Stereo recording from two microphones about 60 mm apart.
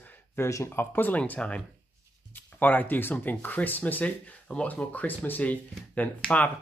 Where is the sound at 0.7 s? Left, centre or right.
Left.